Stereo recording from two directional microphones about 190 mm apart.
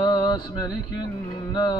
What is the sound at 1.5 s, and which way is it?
Music, 20° left (ahead or behind).